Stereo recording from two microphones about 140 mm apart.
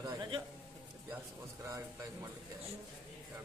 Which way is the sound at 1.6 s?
20° right (ahead or behind).